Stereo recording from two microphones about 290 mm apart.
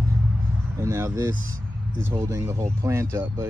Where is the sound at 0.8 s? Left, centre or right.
Centre.